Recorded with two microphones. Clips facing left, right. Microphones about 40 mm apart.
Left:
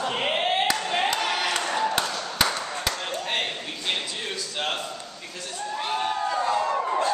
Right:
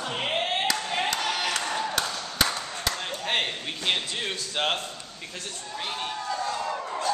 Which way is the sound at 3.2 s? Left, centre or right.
Centre.